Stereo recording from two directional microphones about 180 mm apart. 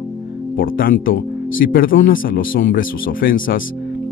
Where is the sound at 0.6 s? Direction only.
55° left (ahead or behind).